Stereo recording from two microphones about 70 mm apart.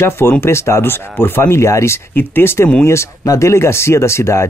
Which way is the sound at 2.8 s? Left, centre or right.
Left.